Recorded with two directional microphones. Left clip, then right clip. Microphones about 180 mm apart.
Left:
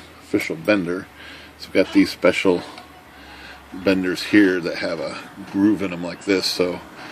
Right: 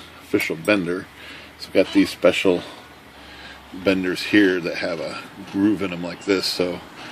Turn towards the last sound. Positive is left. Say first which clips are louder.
# left 2 dB
turn(degrees=5)  # may be behind; listen again after turning